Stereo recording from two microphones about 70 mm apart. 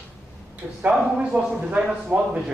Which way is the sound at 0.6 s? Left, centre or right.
Centre.